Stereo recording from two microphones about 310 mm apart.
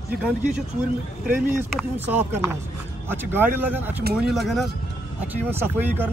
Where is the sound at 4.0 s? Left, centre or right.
Right.